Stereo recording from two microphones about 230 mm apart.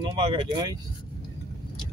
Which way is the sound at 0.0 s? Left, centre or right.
Right.